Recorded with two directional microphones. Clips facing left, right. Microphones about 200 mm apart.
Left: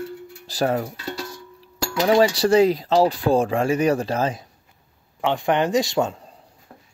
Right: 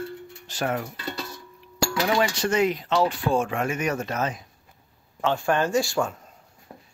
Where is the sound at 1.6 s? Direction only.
35° left (ahead or behind).